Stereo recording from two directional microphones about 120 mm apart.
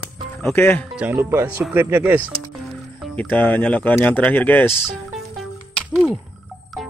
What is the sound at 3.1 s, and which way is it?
Speech, 15° left (ahead or behind).